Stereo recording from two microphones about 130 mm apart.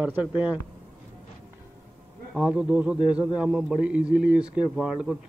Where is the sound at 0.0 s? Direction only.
10° right (ahead or behind).